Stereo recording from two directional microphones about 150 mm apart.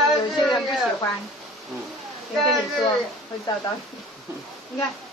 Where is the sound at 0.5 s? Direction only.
Centre (ahead or behind).